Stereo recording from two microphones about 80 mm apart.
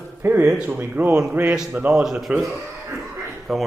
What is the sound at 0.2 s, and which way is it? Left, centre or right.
Speech, right.